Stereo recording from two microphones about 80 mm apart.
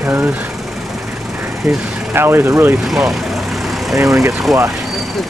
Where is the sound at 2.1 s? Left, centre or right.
Right.